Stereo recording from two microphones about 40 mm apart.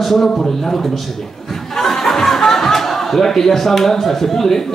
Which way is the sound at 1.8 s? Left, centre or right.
Centre.